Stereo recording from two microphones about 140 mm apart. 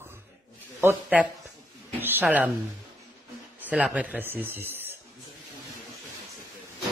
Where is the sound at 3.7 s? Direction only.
10° right (ahead or behind).